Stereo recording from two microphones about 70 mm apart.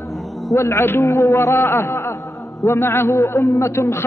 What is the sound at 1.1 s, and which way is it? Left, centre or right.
A man's voice, left.